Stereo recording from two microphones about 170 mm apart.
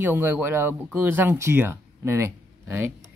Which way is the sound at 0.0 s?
10° right (ahead or behind).